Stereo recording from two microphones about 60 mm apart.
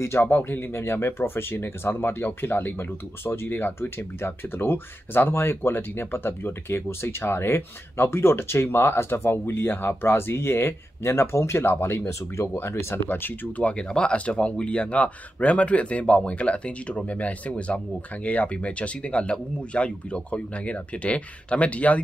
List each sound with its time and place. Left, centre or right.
0.0 s speech: left